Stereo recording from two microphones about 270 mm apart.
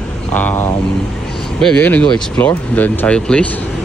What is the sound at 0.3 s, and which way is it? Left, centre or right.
Speech, centre.